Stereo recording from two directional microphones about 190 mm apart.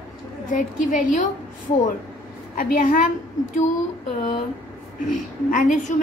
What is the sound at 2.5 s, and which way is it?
Speech, 45° left (ahead or behind).